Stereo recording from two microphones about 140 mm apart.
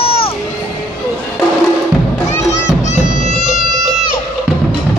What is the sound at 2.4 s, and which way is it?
Music, 55° left (ahead or behind).